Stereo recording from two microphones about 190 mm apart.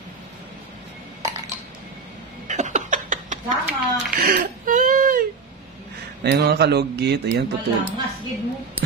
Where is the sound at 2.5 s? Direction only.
40° right (ahead or behind).